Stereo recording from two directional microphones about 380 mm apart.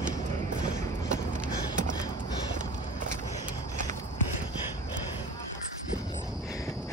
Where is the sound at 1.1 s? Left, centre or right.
Centre.